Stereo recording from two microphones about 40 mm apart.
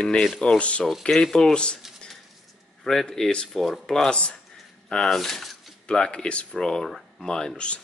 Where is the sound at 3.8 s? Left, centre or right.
Centre.